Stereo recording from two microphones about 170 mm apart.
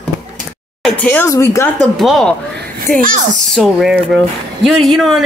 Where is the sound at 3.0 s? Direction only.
55° right (ahead or behind).